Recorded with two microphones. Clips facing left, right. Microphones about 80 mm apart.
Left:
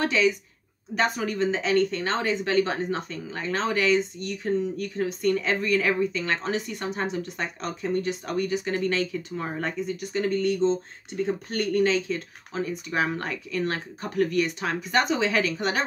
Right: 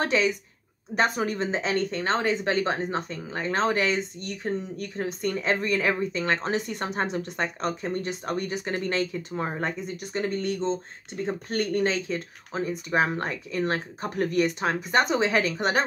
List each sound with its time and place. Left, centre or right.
0.0 s speech: right